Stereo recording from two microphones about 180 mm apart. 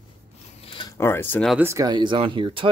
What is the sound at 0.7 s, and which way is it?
Speech, 20° left (ahead or behind).